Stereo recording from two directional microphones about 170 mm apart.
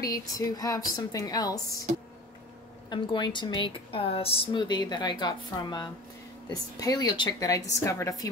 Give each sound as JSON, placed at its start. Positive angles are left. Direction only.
{"t": 0.0, "sound": "a woman's voice", "side_deg": 20}
{"t": 2.9, "sound": "a woman's voice", "side_deg": 25}